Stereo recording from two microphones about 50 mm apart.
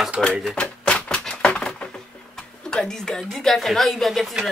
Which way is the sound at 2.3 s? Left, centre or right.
Centre.